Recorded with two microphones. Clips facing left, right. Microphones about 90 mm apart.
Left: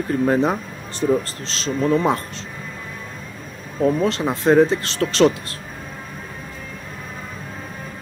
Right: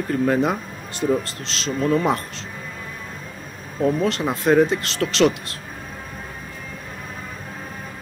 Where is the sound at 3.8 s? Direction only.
30° left (ahead or behind).